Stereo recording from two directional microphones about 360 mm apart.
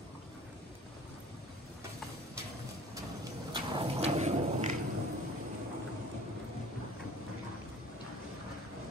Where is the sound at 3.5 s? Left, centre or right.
Centre.